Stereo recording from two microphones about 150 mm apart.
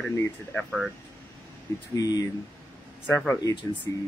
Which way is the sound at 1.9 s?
25° left (ahead or behind).